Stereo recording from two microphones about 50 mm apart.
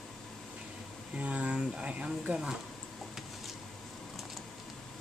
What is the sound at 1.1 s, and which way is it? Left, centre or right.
Speech, right.